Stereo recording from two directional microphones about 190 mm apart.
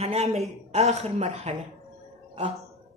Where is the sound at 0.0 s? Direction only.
35° right (ahead or behind).